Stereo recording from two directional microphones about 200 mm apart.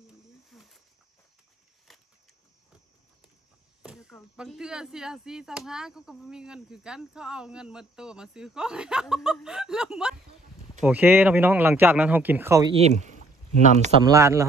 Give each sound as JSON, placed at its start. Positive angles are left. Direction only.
{"t": 0.5, "sound": "snake", "side_deg": 0}
{"t": 1.9, "sound": "a sound", "side_deg": 0}
{"t": 3.8, "sound": "speech", "side_deg": -5}
{"t": 12.7, "sound": "speech", "side_deg": -35}
{"t": 14.0, "sound": "speech", "side_deg": -15}